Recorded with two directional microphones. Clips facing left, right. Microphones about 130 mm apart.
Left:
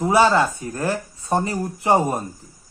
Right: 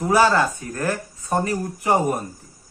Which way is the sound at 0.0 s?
20° left (ahead or behind).